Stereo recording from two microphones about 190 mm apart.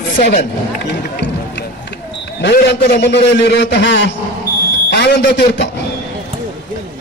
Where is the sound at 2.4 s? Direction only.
60° left (ahead or behind).